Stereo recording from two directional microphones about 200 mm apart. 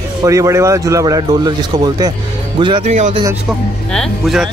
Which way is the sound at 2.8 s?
35° right (ahead or behind).